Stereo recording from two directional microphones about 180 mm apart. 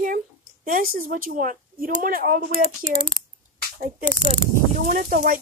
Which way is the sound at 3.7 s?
45° right (ahead or behind).